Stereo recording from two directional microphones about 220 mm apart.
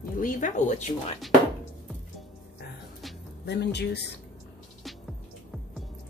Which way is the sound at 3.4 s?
50° left (ahead or behind).